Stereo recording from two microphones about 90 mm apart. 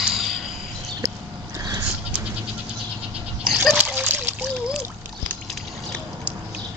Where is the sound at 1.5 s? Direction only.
40° right (ahead or behind).